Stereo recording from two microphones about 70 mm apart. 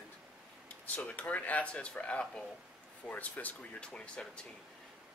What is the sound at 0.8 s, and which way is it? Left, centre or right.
Speech, left.